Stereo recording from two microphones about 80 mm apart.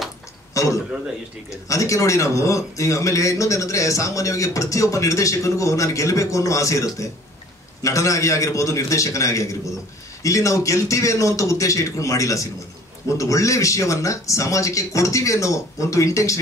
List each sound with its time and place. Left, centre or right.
0.6 s a man's voice: left